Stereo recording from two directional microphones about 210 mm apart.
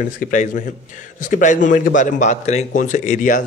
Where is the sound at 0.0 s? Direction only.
40° left (ahead or behind).